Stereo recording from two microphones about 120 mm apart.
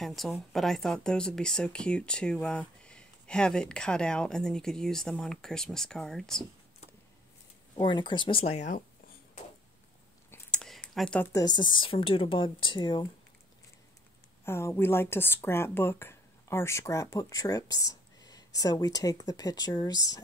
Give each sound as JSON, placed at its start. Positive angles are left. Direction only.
{"t": 0.0, "sound": "a woman's voice", "side_deg": 0}
{"t": 7.7, "sound": "a woman's voice", "side_deg": 40}
{"t": 10.5, "sound": "a sound", "side_deg": 5}
{"t": 11.3, "sound": "a woman's voice", "side_deg": 35}
{"t": 14.4, "sound": "speech", "side_deg": 20}